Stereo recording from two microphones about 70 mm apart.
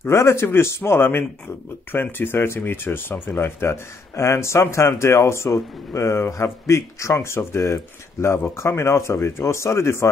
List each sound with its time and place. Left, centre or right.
0.0 s speech: left